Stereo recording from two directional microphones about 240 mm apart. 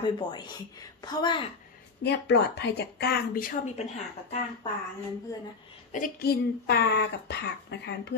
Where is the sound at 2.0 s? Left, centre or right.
Left.